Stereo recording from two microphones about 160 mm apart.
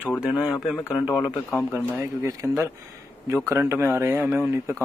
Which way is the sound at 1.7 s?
15° right (ahead or behind).